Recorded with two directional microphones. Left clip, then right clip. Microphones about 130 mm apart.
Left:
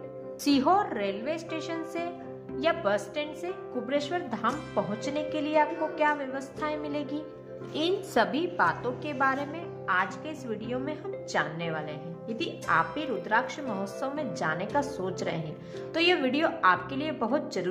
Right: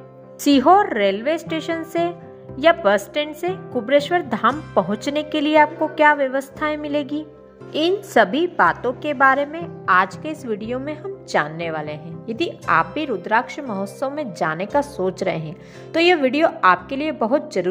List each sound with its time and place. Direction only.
0.4 s a woman's voice: 50° right (ahead or behind)
9.8 s a woman's voice: 80° right; by 17.6 s 50° right (ahead or behind)